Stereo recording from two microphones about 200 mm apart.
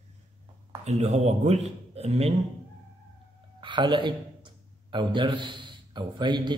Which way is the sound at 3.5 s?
25° right (ahead or behind).